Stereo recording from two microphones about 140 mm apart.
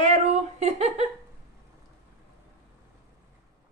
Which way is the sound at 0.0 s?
50° right (ahead or behind).